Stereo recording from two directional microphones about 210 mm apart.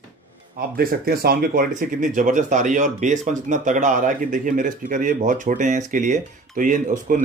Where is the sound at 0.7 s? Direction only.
45° right (ahead or behind).